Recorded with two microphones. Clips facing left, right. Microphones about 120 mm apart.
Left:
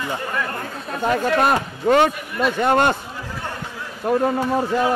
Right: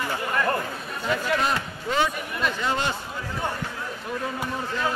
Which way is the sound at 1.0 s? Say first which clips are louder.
Left 7 dB; 50° left (ahead or behind).